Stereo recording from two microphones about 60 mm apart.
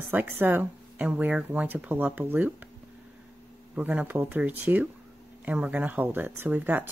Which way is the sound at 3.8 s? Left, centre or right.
Right.